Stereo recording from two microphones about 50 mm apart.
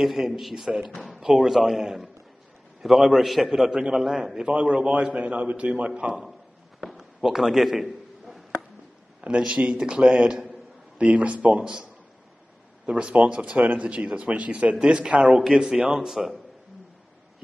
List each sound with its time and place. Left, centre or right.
0.0 s a man's voice: centre
7.0 s a sound: centre
9.5 s a man's voice: centre
11.6 s a man's voice: centre
13.2 s a man's voice: centre